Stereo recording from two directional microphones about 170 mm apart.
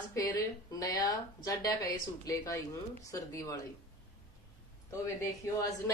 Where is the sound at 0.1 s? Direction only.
20° left (ahead or behind).